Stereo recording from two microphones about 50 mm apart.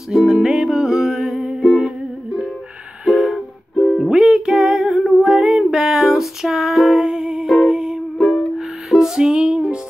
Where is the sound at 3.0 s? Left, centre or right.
Centre.